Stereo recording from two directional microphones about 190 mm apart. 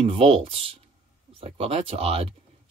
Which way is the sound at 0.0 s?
30° right (ahead or behind).